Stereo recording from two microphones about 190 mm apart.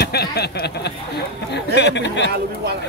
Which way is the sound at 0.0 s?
55° left (ahead or behind).